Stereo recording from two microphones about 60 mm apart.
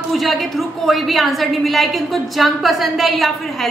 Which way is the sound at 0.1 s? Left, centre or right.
Centre.